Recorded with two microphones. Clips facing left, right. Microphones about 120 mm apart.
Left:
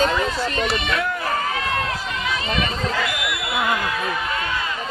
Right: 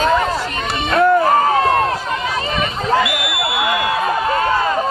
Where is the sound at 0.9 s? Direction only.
40° right (ahead or behind).